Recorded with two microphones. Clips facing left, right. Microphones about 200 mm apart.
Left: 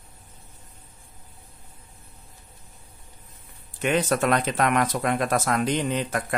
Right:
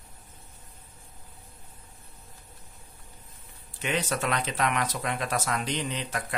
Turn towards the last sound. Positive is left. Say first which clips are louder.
# left 7 dB
turn(degrees=50)  # may be behind; listen again after turning